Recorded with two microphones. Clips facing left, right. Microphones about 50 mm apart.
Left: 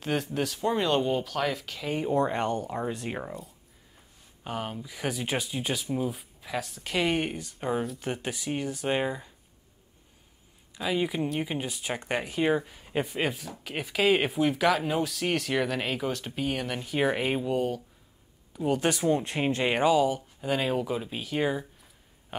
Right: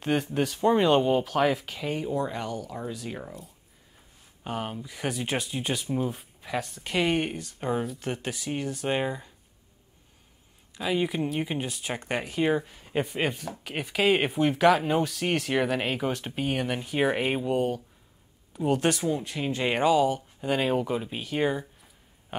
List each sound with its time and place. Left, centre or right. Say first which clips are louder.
0.0 s speech: right 3 dB; centre
2.0 s speech: left 5 dB; left
4.5 s speech: right 1 dB; centre
8.0 s speech: even; centre
10.8 s speech: right 1 dB; centre
18.5 s a sound: right 2 dB; centre
18.8 s speech: even; centre
19.3 s speech: left 3 dB; left
19.6 s speech: right 1 dB; centre